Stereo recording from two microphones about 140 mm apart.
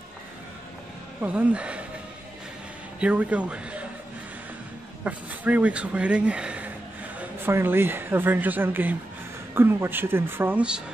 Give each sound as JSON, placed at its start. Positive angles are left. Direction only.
{"t": 1.2, "sound": "speech", "side_deg": -10}
{"t": 3.0, "sound": "speech", "side_deg": -10}
{"t": 5.0, "sound": "speech", "side_deg": -10}